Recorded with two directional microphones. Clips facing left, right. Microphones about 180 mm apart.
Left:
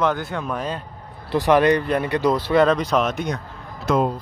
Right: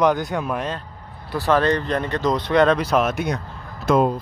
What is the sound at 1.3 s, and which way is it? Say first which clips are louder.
Speech: left 3 dB; 15° left (ahead or behind).